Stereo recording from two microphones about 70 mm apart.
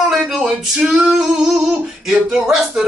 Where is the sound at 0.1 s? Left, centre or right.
Centre.